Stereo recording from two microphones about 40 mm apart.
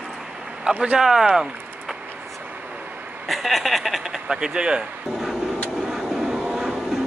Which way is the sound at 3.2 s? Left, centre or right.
Centre.